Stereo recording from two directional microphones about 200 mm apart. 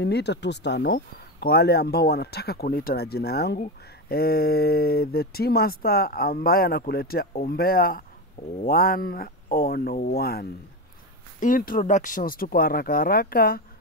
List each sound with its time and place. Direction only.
0.0 s speech: 60° left (ahead or behind)